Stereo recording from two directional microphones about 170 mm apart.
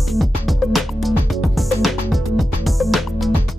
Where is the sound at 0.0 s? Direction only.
Centre (ahead or behind).